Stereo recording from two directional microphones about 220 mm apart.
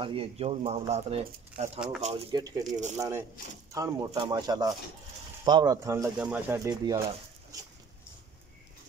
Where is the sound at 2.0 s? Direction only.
25° right (ahead or behind).